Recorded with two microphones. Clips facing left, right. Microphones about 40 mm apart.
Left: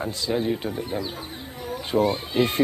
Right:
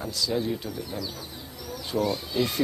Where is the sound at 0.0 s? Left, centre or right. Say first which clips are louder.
Left 3 dB; left.